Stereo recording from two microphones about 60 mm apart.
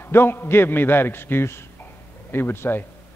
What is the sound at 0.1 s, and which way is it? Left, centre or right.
A man's voice, left.